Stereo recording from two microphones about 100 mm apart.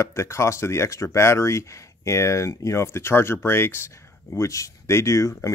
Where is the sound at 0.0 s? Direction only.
25° left (ahead or behind).